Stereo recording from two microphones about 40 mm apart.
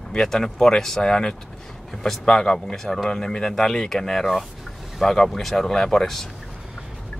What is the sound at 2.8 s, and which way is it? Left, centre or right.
Speech, centre.